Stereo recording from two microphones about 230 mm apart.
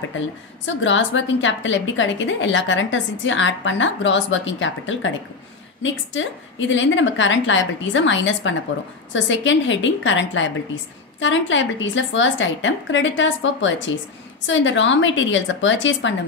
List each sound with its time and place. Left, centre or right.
0.7 s a woman's voice: left